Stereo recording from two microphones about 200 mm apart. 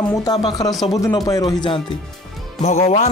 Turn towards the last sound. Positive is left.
turn(degrees=35)  # may be behind; listen again after turning